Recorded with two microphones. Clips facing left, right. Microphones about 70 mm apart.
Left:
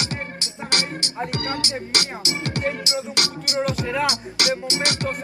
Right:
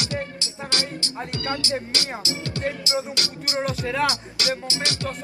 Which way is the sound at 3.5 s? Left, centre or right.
Right.